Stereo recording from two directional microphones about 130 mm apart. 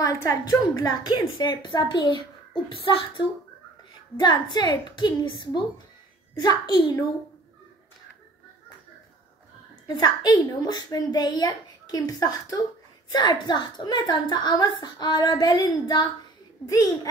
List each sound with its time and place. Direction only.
0.0 s a woman's voice: 25° left (ahead or behind)
9.8 s a woman's voice: 35° left (ahead or behind)